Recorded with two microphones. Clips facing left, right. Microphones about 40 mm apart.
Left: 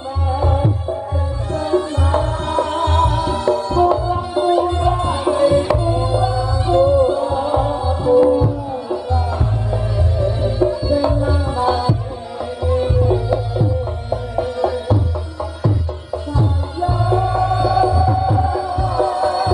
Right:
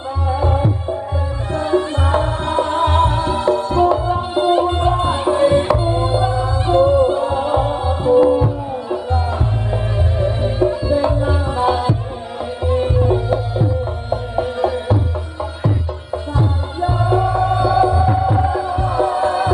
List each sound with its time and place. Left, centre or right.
0.3 s music: centre
1.5 s music: right
10.2 s music: right
16.3 s music: right